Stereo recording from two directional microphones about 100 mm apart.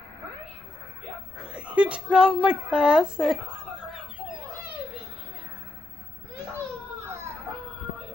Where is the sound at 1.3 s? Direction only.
10° right (ahead or behind).